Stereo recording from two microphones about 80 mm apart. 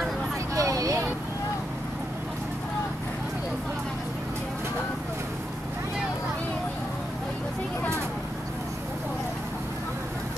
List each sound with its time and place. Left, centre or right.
0.6 s vehicle: right